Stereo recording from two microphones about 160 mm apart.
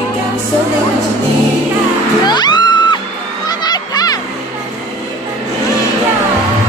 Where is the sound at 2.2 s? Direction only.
25° left (ahead or behind).